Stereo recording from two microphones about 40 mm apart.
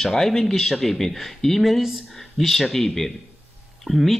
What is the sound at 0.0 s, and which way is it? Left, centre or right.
Speech, centre.